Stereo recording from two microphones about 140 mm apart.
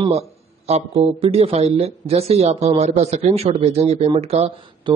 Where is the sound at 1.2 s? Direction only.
45° right (ahead or behind).